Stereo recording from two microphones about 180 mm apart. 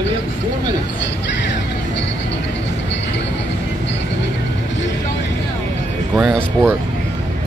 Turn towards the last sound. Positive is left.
turn(degrees=-5)  # may be behind; listen again after turning